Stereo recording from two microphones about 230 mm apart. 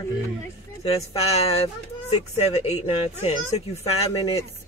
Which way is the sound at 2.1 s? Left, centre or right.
Left.